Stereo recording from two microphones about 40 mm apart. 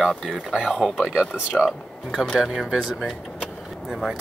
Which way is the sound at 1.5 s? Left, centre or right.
Left.